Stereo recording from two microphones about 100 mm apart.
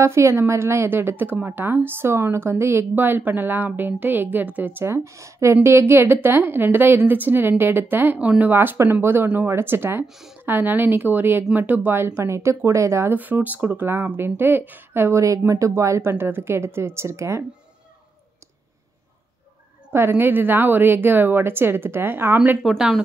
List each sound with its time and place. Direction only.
0.0 s a woman's voice: 30° right (ahead or behind)
19.9 s a woman's voice: 25° right (ahead or behind)
22.6 s speech: 5° right (ahead or behind)